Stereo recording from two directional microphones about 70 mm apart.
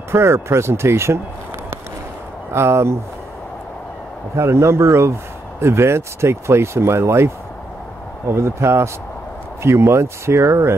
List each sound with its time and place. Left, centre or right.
0.1 s speech: right
2.5 s speech: right
4.4 s speech: right
8.4 s speech: right